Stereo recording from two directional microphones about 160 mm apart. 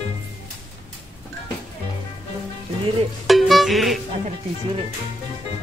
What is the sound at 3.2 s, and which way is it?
Music, centre (ahead or behind).